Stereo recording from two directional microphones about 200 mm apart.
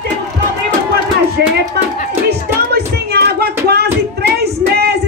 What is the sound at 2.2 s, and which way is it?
Music, 55° right (ahead or behind).